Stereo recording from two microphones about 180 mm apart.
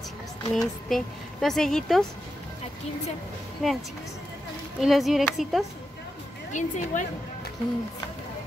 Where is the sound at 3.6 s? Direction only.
Centre (ahead or behind).